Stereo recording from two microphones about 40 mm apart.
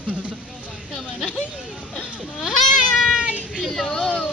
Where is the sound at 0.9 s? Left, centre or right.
Centre.